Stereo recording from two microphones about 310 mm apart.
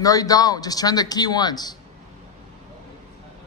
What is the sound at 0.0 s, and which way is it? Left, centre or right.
A man's voice, centre.